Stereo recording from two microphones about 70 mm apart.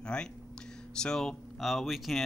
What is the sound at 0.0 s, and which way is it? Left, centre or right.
Speech, centre.